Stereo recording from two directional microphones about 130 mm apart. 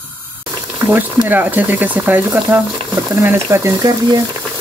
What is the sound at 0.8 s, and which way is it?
Speech, 15° right (ahead or behind).